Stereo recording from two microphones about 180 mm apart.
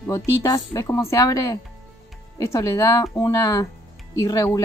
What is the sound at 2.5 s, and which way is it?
Speech, 15° left (ahead or behind).